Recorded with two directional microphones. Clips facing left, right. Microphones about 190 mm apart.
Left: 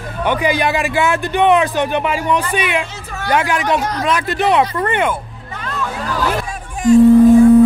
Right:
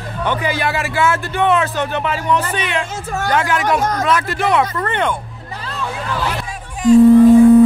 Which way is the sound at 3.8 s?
45° right (ahead or behind).